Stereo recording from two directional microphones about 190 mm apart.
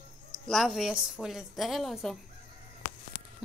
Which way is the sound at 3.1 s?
20° left (ahead or behind).